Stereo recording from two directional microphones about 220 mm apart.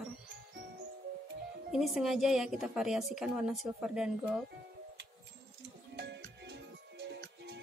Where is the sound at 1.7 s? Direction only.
Centre (ahead or behind).